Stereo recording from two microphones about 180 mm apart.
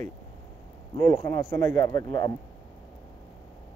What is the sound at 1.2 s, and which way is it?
A man's voice, 15° left (ahead or behind).